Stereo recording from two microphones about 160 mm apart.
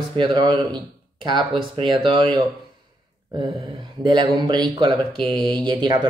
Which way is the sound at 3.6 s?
25° right (ahead or behind).